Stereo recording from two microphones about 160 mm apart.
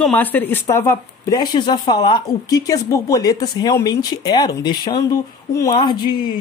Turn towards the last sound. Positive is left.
turn(degrees=30)  # may be behind; listen again after turning